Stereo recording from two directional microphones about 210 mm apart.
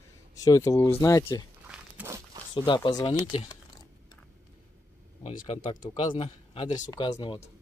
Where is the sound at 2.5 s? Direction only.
20° left (ahead or behind).